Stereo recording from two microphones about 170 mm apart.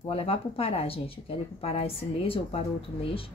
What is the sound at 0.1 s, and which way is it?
A woman's voice, 35° left (ahead or behind).